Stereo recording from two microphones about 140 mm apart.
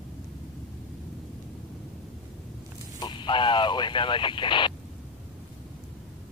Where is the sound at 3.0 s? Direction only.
35° left (ahead or behind).